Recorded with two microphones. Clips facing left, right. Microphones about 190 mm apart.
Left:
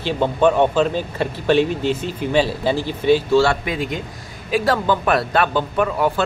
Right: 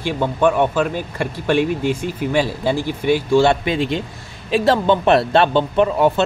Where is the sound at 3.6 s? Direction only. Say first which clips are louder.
Right 4 dB; 25° right (ahead or behind).